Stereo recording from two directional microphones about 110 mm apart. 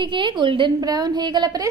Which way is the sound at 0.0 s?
45° right (ahead or behind).